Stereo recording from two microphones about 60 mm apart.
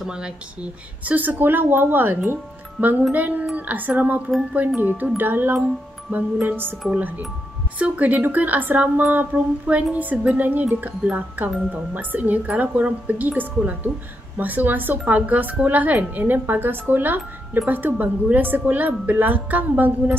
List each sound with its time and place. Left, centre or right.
0.0 s speech: centre
1.0 s a woman's voice: right